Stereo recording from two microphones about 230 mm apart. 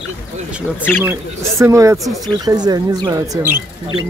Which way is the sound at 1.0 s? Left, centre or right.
Centre.